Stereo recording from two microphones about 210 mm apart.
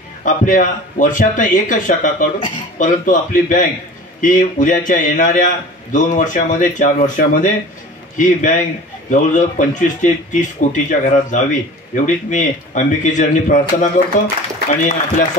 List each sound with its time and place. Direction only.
0.2 s speech: 40° left (ahead or behind)